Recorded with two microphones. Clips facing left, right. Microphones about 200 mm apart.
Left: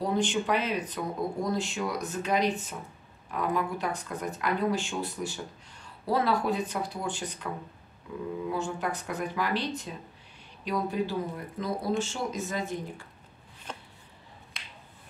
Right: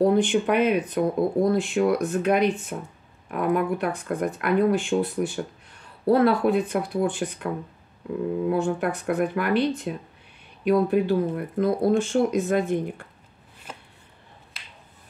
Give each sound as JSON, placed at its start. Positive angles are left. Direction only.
{"t": 0.0, "sound": "speech", "side_deg": -55}
{"t": 8.5, "sound": "speech", "side_deg": -55}
{"t": 13.7, "sound": "chopping", "side_deg": -5}
{"t": 14.5, "sound": "finger snapping", "side_deg": -5}